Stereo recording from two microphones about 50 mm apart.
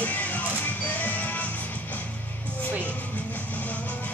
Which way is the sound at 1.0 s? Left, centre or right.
Left.